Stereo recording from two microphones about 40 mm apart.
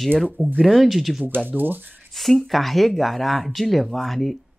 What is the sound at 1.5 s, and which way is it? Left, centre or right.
Speech, right.